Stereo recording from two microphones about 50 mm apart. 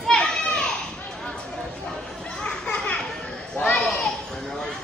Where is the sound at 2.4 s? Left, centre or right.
Centre.